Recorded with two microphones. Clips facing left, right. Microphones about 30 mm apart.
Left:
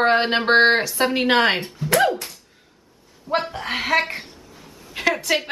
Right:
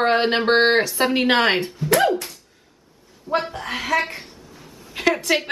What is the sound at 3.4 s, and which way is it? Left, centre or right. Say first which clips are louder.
Speech: even; centre.